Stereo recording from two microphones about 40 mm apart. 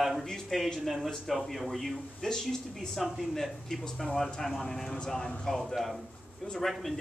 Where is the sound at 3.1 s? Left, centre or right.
Centre.